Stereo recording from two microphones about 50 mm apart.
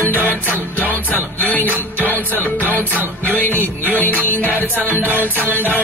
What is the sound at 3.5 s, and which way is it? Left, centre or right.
Music, right.